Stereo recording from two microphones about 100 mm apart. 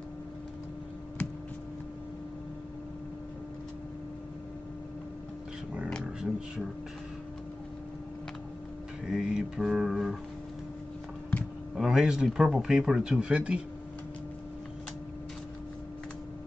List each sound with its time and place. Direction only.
9.0 s music: 5° right (ahead or behind)
11.7 s speech: 5° right (ahead or behind)